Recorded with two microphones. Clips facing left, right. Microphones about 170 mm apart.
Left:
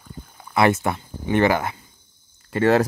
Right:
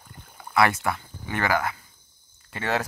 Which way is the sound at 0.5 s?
25° left (ahead or behind).